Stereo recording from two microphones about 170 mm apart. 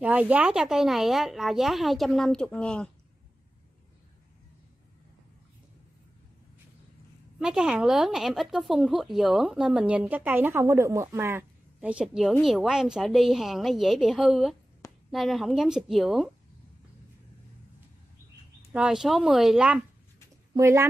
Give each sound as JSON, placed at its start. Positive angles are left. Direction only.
{"t": 0.0, "sound": "speech", "side_deg": -10}
{"t": 7.3, "sound": "speech", "side_deg": -5}
{"t": 18.7, "sound": "speech", "side_deg": -5}
{"t": 20.5, "sound": "speech", "side_deg": -20}